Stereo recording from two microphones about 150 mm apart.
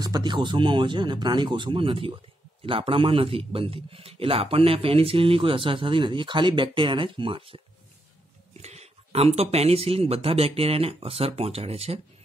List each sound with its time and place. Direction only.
0.0 s speech: 30° right (ahead or behind)